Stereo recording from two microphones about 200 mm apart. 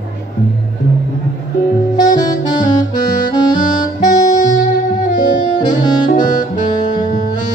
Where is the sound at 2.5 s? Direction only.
20° left (ahead or behind).